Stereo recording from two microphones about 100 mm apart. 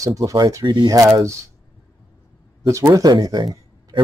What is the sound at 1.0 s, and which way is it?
Speech, 30° right (ahead or behind).